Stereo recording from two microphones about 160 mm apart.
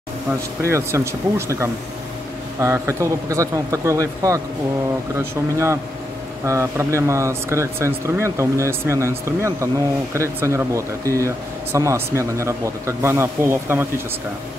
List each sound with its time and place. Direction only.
0.3 s a man's voice: 15° right (ahead or behind)
2.6 s a man's voice: 20° right (ahead or behind)